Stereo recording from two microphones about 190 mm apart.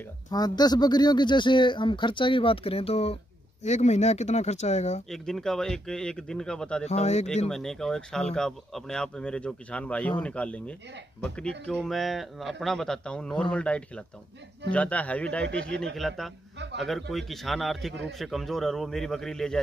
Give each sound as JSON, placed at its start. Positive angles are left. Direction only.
{"t": 0.3, "sound": "speech", "side_deg": 20}
{"t": 5.1, "sound": "speech", "side_deg": 0}
{"t": 6.9, "sound": "speech", "side_deg": 35}
{"t": 7.4, "sound": "speech", "side_deg": 0}